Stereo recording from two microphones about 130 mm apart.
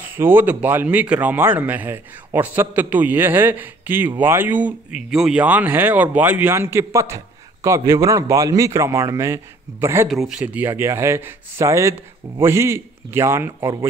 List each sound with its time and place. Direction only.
0.0 s speech: 15° right (ahead or behind)
10.0 s speech: centre (ahead or behind)
10.4 s speech: 15° right (ahead or behind)